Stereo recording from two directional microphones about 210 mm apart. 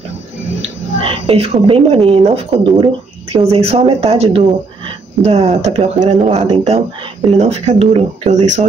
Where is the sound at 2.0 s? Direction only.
30° right (ahead or behind).